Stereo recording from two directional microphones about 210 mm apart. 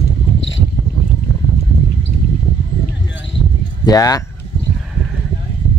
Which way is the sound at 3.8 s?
20° left (ahead or behind).